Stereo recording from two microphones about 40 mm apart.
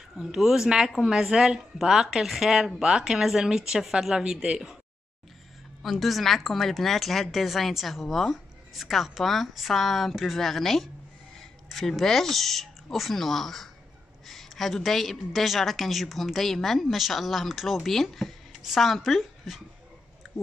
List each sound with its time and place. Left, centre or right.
0.2 s a woman's voice: centre
5.8 s a woman's voice: centre